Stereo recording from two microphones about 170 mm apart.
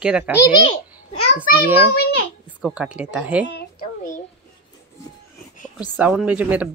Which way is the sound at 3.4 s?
75° left (ahead or behind).